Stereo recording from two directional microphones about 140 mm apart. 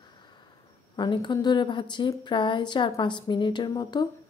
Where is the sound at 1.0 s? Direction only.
30° left (ahead or behind).